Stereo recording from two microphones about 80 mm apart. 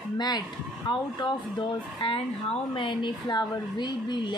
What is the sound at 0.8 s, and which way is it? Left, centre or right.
Speech, left.